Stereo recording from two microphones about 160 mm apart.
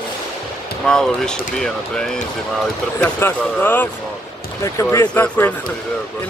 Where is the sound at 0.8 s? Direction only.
5° left (ahead or behind).